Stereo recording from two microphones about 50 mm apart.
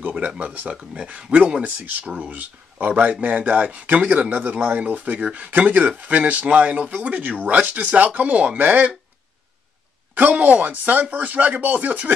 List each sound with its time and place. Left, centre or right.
0.4 s speech: right
10.4 s speech: right